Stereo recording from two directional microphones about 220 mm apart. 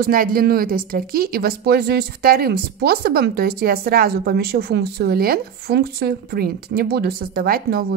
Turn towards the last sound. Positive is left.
turn(degrees=-45)  # may be behind; listen again after turning